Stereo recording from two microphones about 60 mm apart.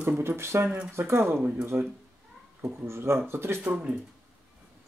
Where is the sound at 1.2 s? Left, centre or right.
Right.